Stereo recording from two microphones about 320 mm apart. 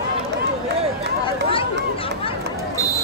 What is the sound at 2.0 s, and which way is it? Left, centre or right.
Speech, centre.